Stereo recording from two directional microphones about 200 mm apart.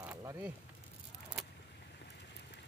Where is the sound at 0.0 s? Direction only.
10° right (ahead or behind).